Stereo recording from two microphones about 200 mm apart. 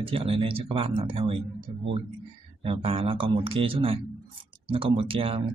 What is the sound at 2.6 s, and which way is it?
Speech, 30° right (ahead or behind).